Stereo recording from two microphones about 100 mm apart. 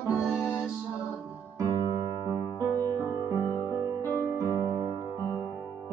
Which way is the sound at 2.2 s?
35° right (ahead or behind).